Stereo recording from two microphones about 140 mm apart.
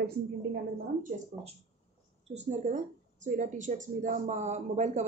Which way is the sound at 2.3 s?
55° right (ahead or behind).